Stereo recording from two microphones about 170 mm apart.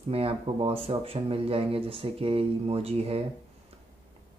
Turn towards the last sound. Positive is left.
turn(degrees=-35)  # may be behind; listen again after turning